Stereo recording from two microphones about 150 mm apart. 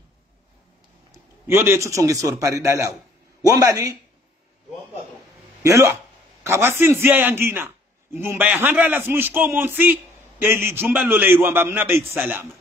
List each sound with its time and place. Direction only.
1.1 s a man's voice: 15° right (ahead or behind)
5.6 s a man's voice: 20° right (ahead or behind)